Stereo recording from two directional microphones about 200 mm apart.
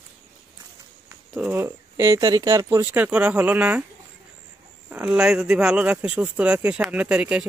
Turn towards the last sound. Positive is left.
turn(degrees=-5)  # may be behind; listen again after turning